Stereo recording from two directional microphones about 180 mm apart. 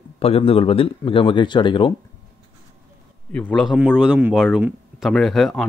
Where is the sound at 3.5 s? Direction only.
Centre (ahead or behind).